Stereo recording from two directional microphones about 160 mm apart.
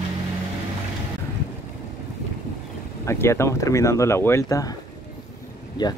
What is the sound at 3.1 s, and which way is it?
Speech, 15° left (ahead or behind).